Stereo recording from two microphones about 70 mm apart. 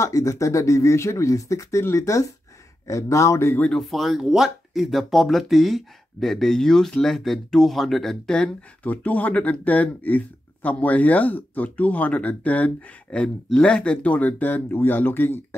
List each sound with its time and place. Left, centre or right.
0.0 s speech: left
3.7 s speech: centre
8.8 s speech: left